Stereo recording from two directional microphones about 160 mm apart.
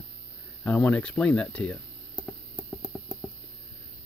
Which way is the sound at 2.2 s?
Centre (ahead or behind).